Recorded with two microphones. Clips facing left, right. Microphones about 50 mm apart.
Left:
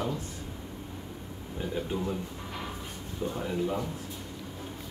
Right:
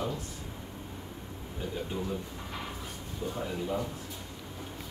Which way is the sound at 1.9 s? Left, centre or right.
Left.